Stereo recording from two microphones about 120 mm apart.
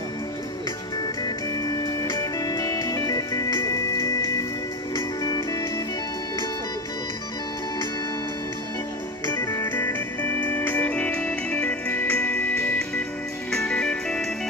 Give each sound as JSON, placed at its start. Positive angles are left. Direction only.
{"t": 1.2, "sound": "music", "side_deg": 30}
{"t": 4.9, "sound": "music", "side_deg": 35}
{"t": 9.3, "sound": "music", "side_deg": 20}